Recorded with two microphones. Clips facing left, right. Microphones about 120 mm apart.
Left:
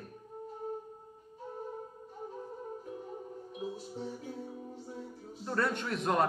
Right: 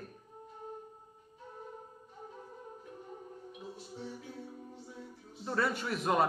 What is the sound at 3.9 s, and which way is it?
Music, 40° left (ahead or behind).